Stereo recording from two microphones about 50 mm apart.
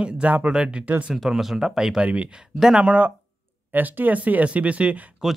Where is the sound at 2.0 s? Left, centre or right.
Right.